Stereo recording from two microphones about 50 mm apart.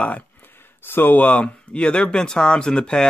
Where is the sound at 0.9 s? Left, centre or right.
Left.